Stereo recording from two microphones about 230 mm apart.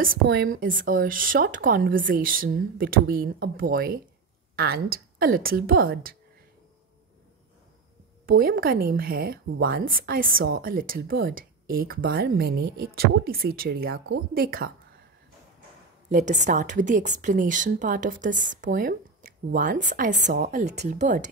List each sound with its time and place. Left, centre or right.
0.0 s a woman's voice: right
8.3 s a woman's voice: right
16.1 s a woman's voice: right